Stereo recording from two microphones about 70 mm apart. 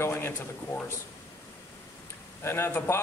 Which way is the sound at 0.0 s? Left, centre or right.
Left.